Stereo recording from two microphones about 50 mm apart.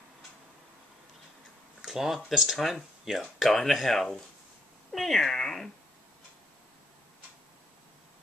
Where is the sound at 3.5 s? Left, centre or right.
Centre.